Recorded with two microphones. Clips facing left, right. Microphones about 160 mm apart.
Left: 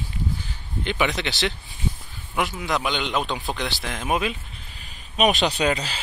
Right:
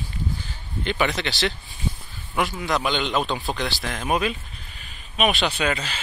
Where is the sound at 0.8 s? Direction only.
15° left (ahead or behind).